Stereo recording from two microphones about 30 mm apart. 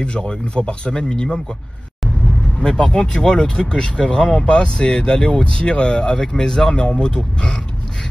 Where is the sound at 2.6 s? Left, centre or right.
Left.